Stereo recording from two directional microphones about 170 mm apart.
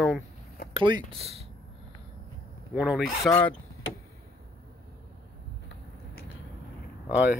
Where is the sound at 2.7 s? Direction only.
5° right (ahead or behind).